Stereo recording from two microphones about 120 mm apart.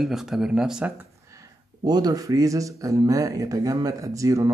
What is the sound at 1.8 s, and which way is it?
Speech, 35° right (ahead or behind).